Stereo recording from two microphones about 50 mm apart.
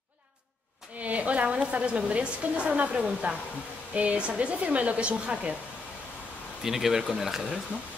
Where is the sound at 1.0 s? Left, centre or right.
Right.